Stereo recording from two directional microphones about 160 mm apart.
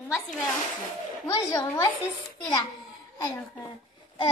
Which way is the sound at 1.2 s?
20° left (ahead or behind).